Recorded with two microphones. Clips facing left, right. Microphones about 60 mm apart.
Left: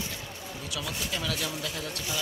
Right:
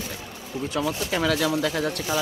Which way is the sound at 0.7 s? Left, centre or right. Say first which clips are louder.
Right 8 dB; right.